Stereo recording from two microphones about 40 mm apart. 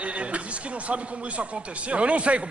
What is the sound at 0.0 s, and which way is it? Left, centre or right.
Speech, right.